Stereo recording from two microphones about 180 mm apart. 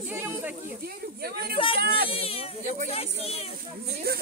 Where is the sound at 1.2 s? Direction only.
60° right (ahead or behind).